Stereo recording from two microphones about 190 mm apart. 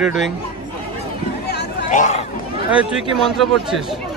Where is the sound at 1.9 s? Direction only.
40° left (ahead or behind).